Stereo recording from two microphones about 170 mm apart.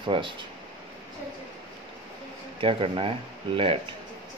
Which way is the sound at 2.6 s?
30° right (ahead or behind).